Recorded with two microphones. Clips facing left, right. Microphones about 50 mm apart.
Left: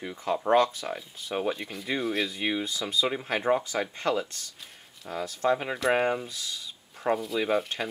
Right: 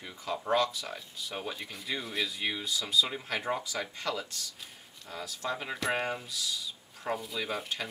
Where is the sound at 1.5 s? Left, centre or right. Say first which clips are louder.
Left 6 dB; centre.